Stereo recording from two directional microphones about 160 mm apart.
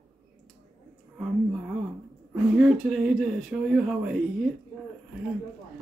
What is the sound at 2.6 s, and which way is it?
Speech, centre (ahead or behind).